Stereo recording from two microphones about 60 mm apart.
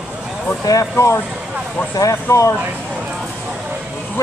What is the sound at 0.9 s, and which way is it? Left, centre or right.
Speech, left.